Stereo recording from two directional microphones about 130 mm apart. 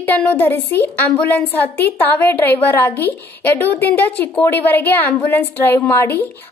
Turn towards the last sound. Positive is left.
turn(degrees=15)  # may be behind; listen again after turning